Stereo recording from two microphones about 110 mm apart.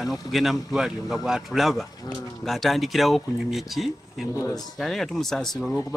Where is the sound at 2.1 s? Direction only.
40° left (ahead or behind).